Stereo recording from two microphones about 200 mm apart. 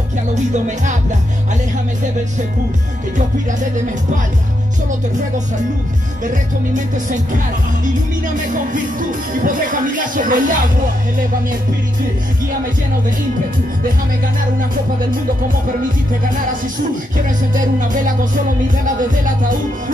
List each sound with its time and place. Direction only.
0.3 s music: 35° right (ahead or behind)
6.2 s music: 40° right (ahead or behind)
9.3 s music: 40° right (ahead or behind)
17.7 s music: 40° right (ahead or behind)